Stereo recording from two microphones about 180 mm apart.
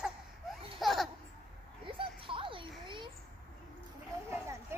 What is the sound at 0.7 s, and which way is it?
Laughter, centre (ahead or behind).